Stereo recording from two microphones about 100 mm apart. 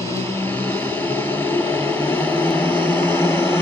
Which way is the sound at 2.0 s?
20° left (ahead or behind).